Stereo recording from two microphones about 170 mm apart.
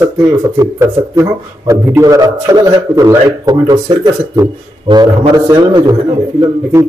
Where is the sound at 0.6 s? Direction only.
15° right (ahead or behind).